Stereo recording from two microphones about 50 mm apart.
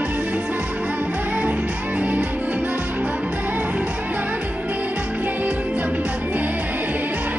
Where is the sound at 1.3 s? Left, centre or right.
Right.